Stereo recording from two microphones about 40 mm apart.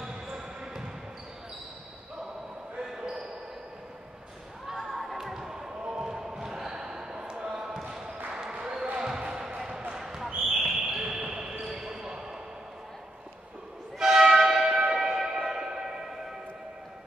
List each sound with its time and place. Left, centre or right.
2.8 s basketball bounce: centre
4.8 s basketball bounce: centre
5.2 s basketball bounce: centre
8.3 s applause: centre
9.0 s basketball bounce: centre
13.9 s train: centre
15.4 s music: centre